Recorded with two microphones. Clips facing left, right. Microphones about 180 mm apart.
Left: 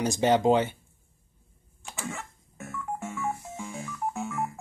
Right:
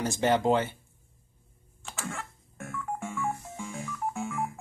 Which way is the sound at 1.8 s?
15° left (ahead or behind).